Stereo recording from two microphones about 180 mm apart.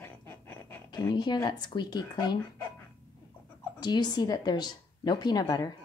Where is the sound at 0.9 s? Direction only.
25° left (ahead or behind).